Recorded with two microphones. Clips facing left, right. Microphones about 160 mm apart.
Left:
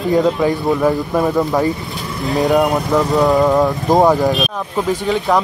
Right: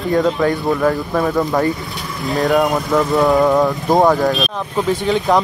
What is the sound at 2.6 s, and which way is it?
Speech, 5° left (ahead or behind).